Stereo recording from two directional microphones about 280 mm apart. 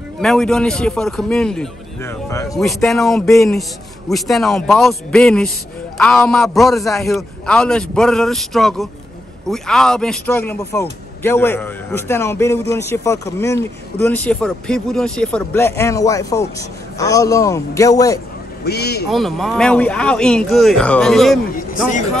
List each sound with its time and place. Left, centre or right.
0.2 s a man's voice: centre
18.6 s speech: left
19.0 s a man's voice: centre